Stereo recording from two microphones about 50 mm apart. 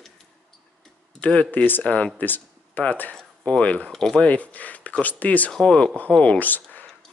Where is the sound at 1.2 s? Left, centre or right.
Left.